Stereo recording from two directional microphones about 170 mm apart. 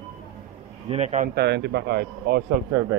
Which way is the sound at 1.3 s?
80° right.